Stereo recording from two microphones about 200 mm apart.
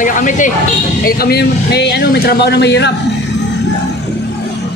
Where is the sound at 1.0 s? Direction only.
50° left (ahead or behind).